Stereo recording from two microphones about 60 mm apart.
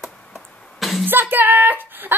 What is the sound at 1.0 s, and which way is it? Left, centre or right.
Music, right.